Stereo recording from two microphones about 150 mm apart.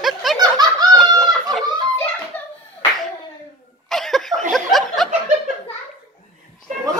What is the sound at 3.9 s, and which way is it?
Snicker, centre (ahead or behind).